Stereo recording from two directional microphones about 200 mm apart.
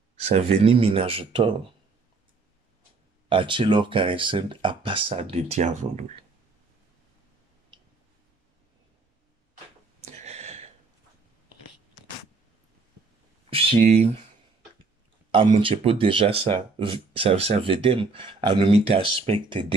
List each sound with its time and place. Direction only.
0.1 s speech: 30° right (ahead or behind)
3.3 s speech: 25° right (ahead or behind)
10.0 s a sound: 35° right (ahead or behind)
13.5 s a sound: 25° right (ahead or behind)
13.7 s speech: 35° right (ahead or behind)
15.6 s speech: 30° right (ahead or behind)